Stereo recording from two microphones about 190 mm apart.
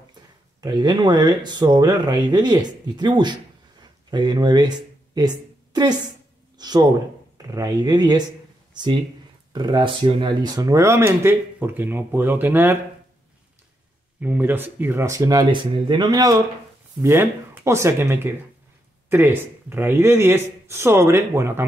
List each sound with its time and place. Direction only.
0.6 s a woman's voice: 20° right (ahead or behind)
9.5 s speech: 25° right (ahead or behind)
14.2 s speech: 10° right (ahead or behind)